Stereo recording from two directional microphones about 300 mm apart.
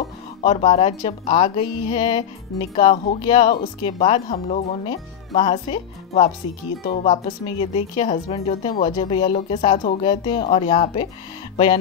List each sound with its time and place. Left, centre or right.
0.4 s a woman's voice: centre